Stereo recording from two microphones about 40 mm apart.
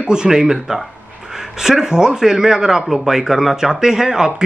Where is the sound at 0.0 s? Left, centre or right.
Centre.